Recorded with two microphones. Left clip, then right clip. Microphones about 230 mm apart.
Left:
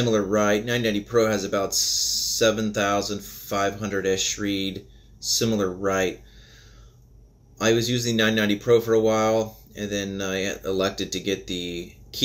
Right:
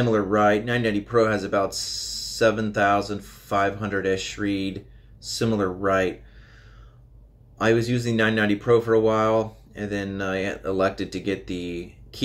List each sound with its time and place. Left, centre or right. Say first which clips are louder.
0.0 s speech: right 2 dB; centre
1.9 s a sound: left 7 dB; right
2.6 s speech: right 2 dB; centre
7.6 s speech: even; centre